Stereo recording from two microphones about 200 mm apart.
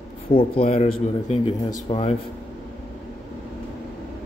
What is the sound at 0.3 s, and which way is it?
Speech, 25° left (ahead or behind).